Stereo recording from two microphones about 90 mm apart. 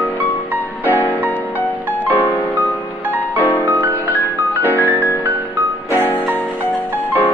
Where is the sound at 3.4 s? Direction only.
25° left (ahead or behind).